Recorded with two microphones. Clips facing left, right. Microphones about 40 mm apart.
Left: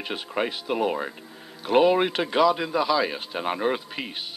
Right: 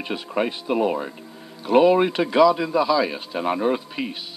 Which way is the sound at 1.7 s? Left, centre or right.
Centre.